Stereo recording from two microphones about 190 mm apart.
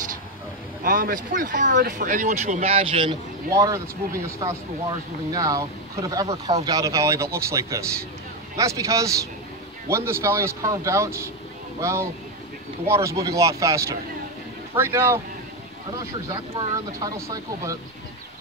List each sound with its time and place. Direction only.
0.8 s speech: 45° right (ahead or behind); by 15.1 s 15° right (ahead or behind)
16.3 s speech: 20° right (ahead or behind)